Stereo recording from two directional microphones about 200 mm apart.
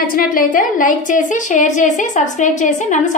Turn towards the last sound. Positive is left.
turn(degrees=35)  # may be behind; listen again after turning